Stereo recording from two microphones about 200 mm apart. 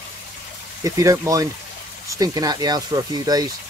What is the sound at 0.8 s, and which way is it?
Speech, 15° right (ahead or behind).